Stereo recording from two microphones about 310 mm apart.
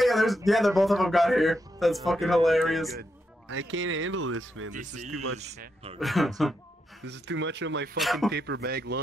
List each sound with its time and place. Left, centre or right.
0.0 s a sound: centre
0.5 s a man's voice: centre
3.0 s speech: right
4.7 s speech: right
5.1 s speech: right
5.9 s a man's voice: centre
7.1 s speech: right
8.0 s a man's voice: centre
8.3 s speech: right